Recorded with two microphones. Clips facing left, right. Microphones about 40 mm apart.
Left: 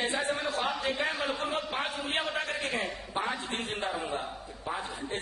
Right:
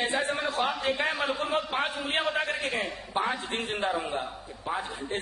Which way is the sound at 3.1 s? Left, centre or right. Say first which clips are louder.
Right 4 dB; right.